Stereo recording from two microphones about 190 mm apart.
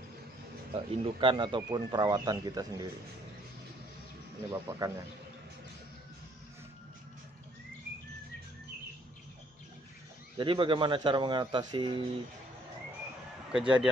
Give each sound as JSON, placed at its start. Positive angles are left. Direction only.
{"t": 0.7, "sound": "speech", "side_deg": -25}
{"t": 4.5, "sound": "a man's voice", "side_deg": -15}
{"t": 10.3, "sound": "speech", "side_deg": -25}
{"t": 13.5, "sound": "a man's voice", "side_deg": -5}